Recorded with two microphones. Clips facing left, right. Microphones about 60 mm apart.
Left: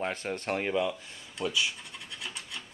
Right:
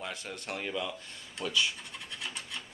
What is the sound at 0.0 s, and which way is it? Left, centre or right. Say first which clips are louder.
Speech: left 7 dB; left.